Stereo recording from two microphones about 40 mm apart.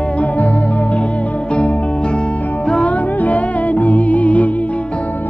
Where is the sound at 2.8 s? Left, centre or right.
Left.